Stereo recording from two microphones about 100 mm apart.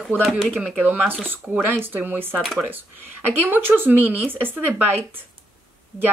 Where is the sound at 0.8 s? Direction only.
15° right (ahead or behind).